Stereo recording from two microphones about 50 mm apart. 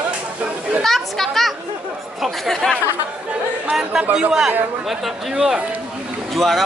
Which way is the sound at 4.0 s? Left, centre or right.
Centre.